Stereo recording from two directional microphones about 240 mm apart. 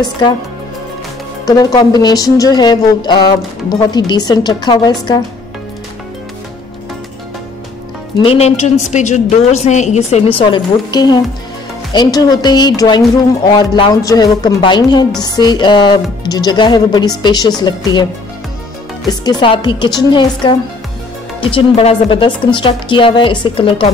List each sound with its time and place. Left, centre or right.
1.4 s speech: centre
8.2 s a woman's voice: left
19.0 s a woman's voice: centre